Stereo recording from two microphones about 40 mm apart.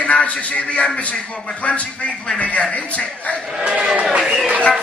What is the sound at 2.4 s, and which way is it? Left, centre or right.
Speech, left.